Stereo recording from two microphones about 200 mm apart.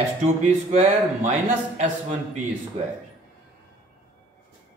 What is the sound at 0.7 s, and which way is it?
Speech, 35° right (ahead or behind).